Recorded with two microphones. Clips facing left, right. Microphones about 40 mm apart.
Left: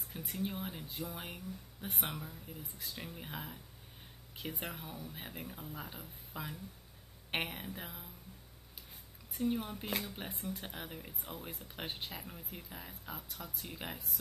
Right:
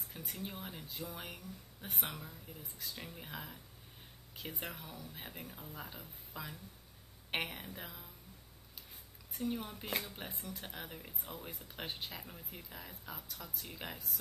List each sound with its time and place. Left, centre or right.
0.1 s speech: centre
9.3 s speech: centre